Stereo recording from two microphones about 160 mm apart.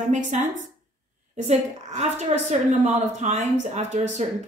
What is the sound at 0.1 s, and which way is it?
A woman's voice, 50° right (ahead or behind).